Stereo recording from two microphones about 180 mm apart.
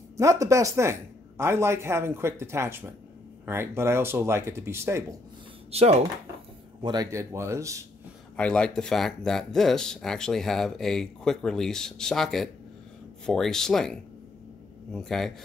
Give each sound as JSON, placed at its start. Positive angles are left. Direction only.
{"t": 0.2, "sound": "speech", "side_deg": -15}
{"t": 5.7, "sound": "speech", "side_deg": -35}
{"t": 6.8, "sound": "speech", "side_deg": -20}
{"t": 8.4, "sound": "speech", "side_deg": 5}